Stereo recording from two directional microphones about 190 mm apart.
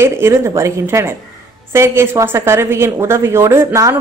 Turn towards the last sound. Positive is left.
turn(degrees=-15)  # may be behind; listen again after turning